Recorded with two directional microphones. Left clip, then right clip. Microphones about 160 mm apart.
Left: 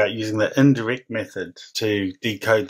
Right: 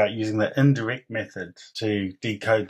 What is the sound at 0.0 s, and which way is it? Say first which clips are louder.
Speech: left 2 dB; 35° left (ahead or behind).